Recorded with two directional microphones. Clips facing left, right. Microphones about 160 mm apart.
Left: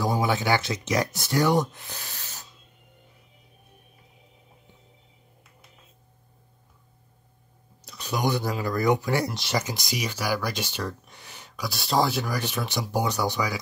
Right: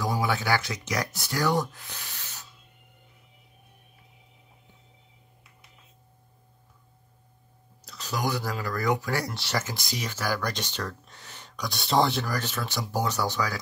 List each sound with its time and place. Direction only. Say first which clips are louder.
0.0 s speech: left 3 dB; 20° left (ahead or behind)
1.9 s a sound: left 2 dB; 40° left (ahead or behind)
7.9 s speech: left 3 dB; 20° left (ahead or behind)